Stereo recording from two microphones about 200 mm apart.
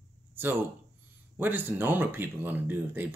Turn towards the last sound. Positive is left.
turn(degrees=-10)  # may be behind; listen again after turning